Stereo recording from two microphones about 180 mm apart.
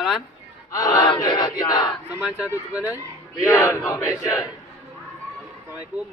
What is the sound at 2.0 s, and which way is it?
Speech, 10° right (ahead or behind).